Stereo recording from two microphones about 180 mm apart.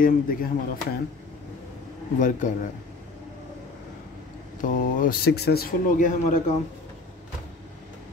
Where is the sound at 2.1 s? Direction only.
45° left (ahead or behind).